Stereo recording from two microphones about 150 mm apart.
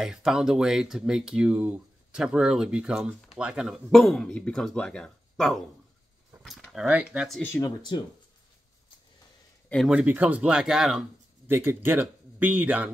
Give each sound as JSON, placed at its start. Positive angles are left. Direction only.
{"t": 0.0, "sound": "speech", "side_deg": -5}
{"t": 7.9, "sound": "speech", "side_deg": 30}
{"t": 9.8, "sound": "speech", "side_deg": -10}
{"t": 11.4, "sound": "speech", "side_deg": -15}